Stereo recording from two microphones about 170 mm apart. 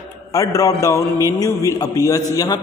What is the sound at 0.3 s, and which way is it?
A man's voice, 20° left (ahead or behind).